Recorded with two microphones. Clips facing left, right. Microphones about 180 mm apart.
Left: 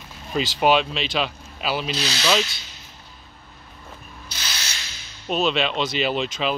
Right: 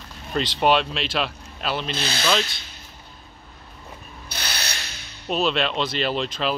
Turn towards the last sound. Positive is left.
turn(degrees=0)  # may be behind; listen again after turning